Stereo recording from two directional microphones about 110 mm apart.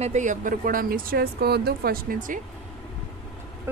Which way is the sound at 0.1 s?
90° right.